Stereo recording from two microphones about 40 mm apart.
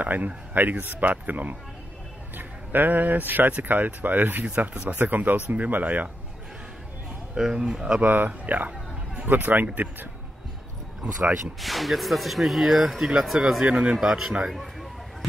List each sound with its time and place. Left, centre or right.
0.0 s speech: right
4.5 s speech: right
7.3 s speech: centre
8.0 s speech: right
11.6 s speech: centre
13.6 s speech: right
13.9 s speech: centre
14.2 s speech: right
14.5 s speech: centre